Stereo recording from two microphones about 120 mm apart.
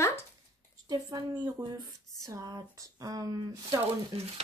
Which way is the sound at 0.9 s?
30° right (ahead or behind).